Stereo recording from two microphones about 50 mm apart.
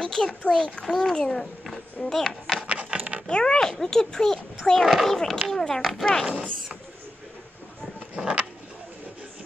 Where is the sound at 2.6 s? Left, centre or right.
Right.